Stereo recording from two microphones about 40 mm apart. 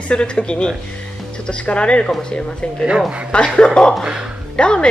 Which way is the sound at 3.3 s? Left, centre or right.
Left.